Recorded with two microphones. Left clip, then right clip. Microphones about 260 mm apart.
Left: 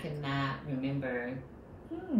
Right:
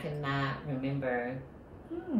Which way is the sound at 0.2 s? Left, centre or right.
Centre.